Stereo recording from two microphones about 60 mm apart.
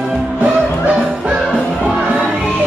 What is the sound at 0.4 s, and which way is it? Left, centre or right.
Music, centre.